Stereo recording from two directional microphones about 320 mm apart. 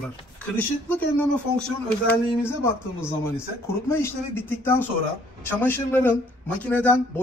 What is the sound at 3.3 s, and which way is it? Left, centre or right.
A man's voice, centre.